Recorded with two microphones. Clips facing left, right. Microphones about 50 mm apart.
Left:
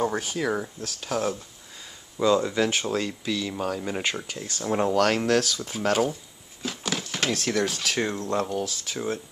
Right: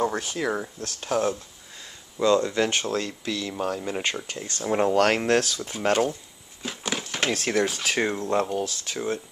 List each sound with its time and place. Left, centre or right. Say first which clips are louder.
0.0 s speech: even; centre
5.1 s speech: right 1 dB; right
5.4 s speech: even; centre
8.6 s speech: right 1 dB; centre